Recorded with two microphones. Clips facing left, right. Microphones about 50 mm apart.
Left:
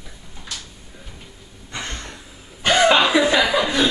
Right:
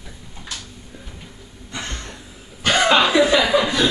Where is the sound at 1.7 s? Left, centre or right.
Left.